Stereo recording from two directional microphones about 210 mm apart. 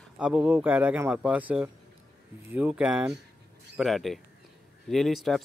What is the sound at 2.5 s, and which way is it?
Speech, 5° right (ahead or behind).